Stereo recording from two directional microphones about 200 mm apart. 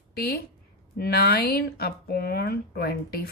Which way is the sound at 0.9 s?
50° left (ahead or behind).